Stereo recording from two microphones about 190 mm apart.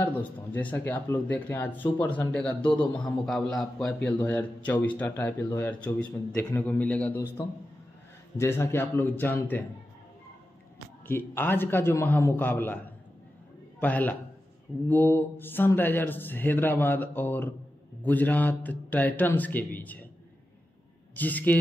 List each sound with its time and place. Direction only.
0.0 s speech: 10° left (ahead or behind)
8.4 s speech: 10° left (ahead or behind)
11.1 s a man's voice: 10° left (ahead or behind)
21.1 s speech: 10° left (ahead or behind)